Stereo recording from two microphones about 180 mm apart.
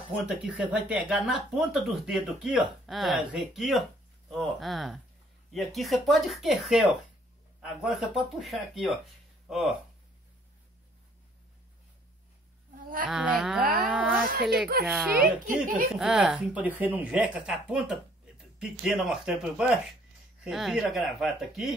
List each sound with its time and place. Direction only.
0.3 s speech: 5° right (ahead or behind)
12.7 s speech: 50° right (ahead or behind)
13.1 s speech: 5° right (ahead or behind)
13.7 s a sound: 5° right (ahead or behind)
14.9 s speech: 5° right (ahead or behind)
15.4 s speech: 50° right (ahead or behind)
15.9 s speech: 5° right (ahead or behind)